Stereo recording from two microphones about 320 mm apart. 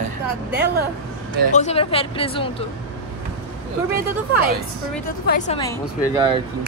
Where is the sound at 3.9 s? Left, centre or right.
Right.